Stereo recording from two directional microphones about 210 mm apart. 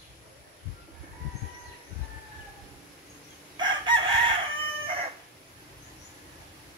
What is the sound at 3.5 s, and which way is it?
Chicken, 25° right (ahead or behind).